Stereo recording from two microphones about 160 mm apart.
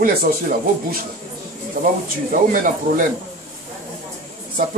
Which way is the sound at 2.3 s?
60° right (ahead or behind).